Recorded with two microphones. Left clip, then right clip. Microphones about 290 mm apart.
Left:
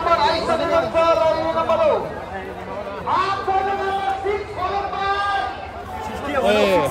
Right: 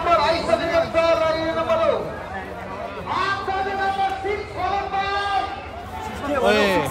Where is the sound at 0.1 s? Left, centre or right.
Centre.